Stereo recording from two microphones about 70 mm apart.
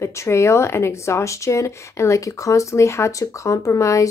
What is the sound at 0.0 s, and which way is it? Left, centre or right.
Speech, left.